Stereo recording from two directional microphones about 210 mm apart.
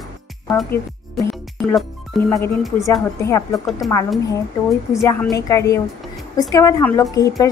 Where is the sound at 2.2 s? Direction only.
15° left (ahead or behind).